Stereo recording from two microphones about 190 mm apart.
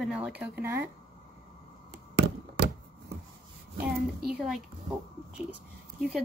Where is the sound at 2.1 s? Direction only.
65° right (ahead or behind).